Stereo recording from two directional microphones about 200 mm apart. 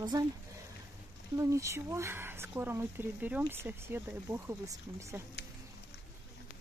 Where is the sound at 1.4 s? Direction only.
15° right (ahead or behind).